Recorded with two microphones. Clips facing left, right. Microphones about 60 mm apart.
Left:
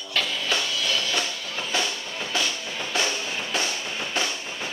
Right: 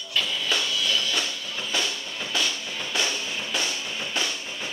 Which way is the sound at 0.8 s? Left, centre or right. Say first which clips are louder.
Even; left.